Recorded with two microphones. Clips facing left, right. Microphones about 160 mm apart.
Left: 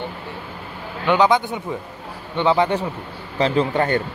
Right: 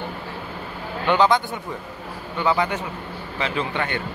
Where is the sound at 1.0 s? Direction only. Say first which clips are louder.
Left 2 dB; 15° left (ahead or behind).